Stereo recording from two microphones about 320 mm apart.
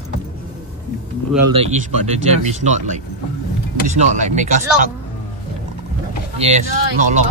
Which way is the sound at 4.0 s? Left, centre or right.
Right.